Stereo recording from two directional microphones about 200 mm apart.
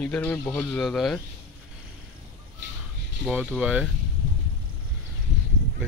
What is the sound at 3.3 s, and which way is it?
Speech, 5° right (ahead or behind).